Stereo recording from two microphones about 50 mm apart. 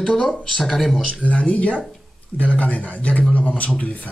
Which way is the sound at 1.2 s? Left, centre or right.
Left.